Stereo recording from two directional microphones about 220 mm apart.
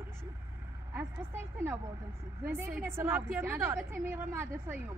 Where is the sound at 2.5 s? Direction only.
10° right (ahead or behind).